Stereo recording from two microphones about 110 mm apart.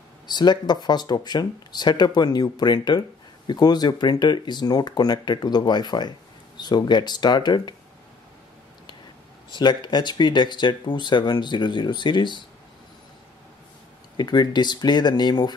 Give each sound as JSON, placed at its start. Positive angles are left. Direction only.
{"t": 0.3, "sound": "speech", "side_deg": 40}
{"t": 9.5, "sound": "speech", "side_deg": 45}
{"t": 14.1, "sound": "speech", "side_deg": 40}